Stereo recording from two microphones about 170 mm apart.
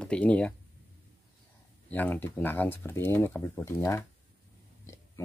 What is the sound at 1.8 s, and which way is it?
Speech, 10° left (ahead or behind).